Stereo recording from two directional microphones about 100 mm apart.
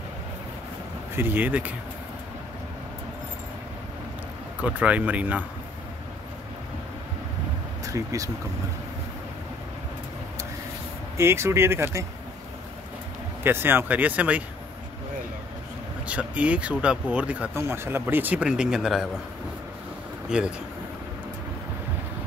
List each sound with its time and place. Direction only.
1.1 s speech: 20° right (ahead or behind)
4.6 s speech: 15° right (ahead or behind)
7.8 s speech: 35° right (ahead or behind)
11.1 s speech: 25° right (ahead or behind)
13.4 s speech: 25° right (ahead or behind)
16.1 s speech: 15° right (ahead or behind)
17.6 s speech: 25° right (ahead or behind); by 19.0 s 5° right (ahead or behind)
20.2 s speech: 10° right (ahead or behind)